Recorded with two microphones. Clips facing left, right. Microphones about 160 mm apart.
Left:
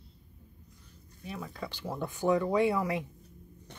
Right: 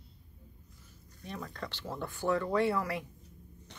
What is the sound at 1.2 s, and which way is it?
Speech, 5° left (ahead or behind).